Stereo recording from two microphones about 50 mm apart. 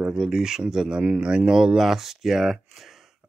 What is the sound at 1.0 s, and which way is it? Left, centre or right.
Speech, right.